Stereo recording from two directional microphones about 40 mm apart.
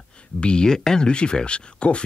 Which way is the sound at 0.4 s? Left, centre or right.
Left.